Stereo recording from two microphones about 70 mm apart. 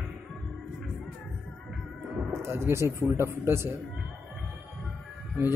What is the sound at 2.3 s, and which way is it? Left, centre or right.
Speech, right.